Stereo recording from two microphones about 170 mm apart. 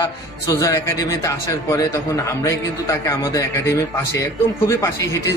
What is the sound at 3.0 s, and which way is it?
A man's voice, 20° left (ahead or behind).